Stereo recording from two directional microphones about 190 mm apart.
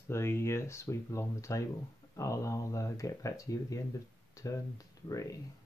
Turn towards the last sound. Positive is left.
turn(degrees=20)  # may be behind; listen again after turning